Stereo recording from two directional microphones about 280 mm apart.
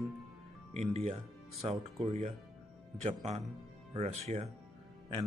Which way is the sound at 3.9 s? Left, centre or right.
Right.